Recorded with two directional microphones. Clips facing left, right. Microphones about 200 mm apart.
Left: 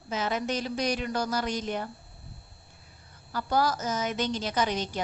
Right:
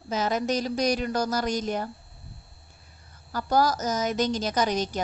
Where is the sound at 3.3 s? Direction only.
40° right (ahead or behind).